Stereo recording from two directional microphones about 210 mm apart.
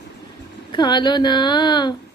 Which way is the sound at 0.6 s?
20° left (ahead or behind).